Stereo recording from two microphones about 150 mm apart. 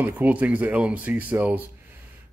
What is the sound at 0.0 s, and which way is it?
Speech, 10° right (ahead or behind).